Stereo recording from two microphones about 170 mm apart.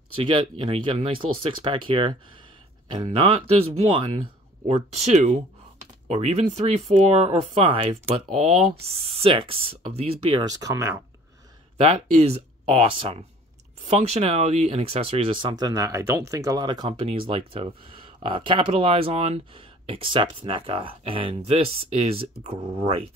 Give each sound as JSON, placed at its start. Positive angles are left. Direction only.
{"t": 0.1, "sound": "speech", "side_deg": -30}
{"t": 4.6, "sound": "speech", "side_deg": -40}
{"t": 8.8, "sound": "speech", "side_deg": -35}
{"t": 10.4, "sound": "speech", "side_deg": -20}
{"t": 11.8, "sound": "speech", "side_deg": -35}